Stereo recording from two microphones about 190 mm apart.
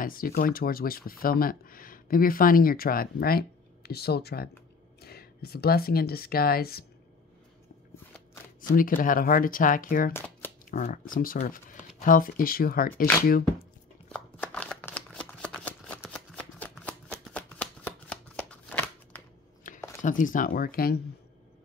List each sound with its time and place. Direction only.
0.0 s speech: 50° left (ahead or behind)
8.5 s speech: 45° left (ahead or behind)
10.1 s speech: 10° left (ahead or behind)
10.7 s speech: 45° left (ahead or behind)
14.0 s shuffling cards: 5° left (ahead or behind)
19.6 s a sound: 45° left (ahead or behind)
20.0 s speech: 45° left (ahead or behind)